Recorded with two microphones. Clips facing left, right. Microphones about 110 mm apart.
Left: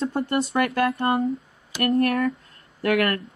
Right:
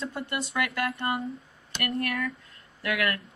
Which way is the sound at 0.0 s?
35° left (ahead or behind).